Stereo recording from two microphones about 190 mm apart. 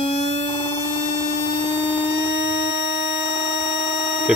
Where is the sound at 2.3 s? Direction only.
70° left (ahead or behind).